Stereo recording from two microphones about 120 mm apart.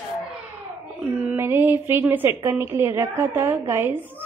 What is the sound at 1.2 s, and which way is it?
A woman's voice, 20° right (ahead or behind).